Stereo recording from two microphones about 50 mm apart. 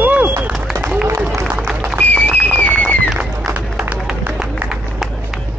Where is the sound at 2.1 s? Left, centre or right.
Left.